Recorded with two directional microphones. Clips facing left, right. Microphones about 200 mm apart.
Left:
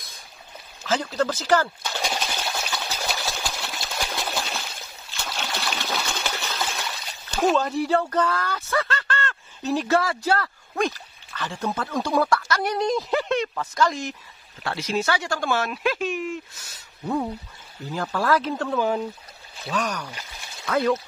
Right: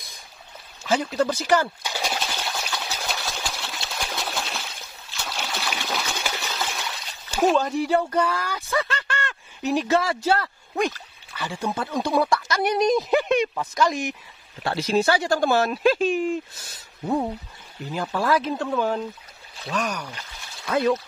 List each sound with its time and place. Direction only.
0.8 s a sound: 15° right (ahead or behind)
11.3 s speech: 15° right (ahead or behind)
14.6 s speech: 30° right (ahead or behind)
17.9 s speech: 15° right (ahead or behind)
18.7 s speech: 10° left (ahead or behind)
20.6 s speech: 15° right (ahead or behind)